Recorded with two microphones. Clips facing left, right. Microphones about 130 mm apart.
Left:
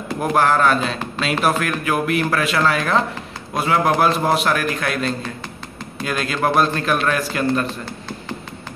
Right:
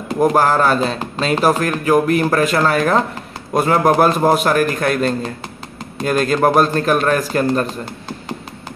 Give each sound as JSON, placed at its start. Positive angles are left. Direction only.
{"t": 0.2, "sound": "a man's voice", "side_deg": -35}